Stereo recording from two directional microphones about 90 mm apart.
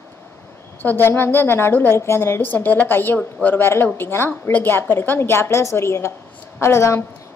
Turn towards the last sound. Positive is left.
turn(degrees=30)  # may be behind; listen again after turning